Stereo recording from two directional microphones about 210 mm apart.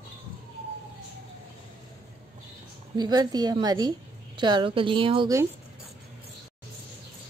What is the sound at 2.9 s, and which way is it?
A woman's voice, 20° right (ahead or behind).